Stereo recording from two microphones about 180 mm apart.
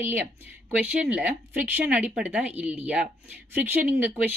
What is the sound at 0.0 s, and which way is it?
Speech, 10° right (ahead or behind).